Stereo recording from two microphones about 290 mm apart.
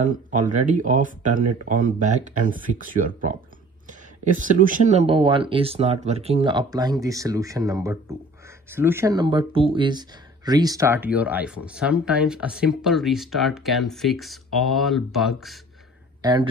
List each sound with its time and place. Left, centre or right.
0.0 s speech: right; by 15.6 s centre
16.2 s speech: centre